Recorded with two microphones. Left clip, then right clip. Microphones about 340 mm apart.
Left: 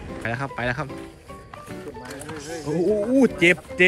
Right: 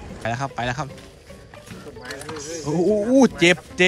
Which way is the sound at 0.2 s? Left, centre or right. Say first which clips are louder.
Right 2 dB; centre.